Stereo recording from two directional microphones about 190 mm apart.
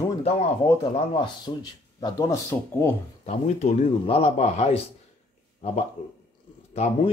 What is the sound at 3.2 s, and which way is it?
Speech, 35° left (ahead or behind).